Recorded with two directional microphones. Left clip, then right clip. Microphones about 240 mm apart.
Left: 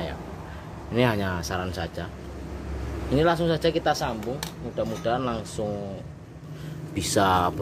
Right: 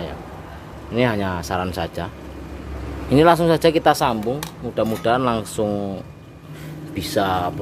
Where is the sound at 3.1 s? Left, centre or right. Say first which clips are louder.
Right 8 dB; right.